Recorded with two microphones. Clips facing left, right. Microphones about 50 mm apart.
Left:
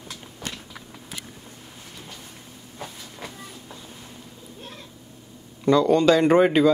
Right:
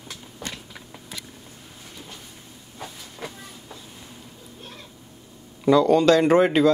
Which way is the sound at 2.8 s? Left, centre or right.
Centre.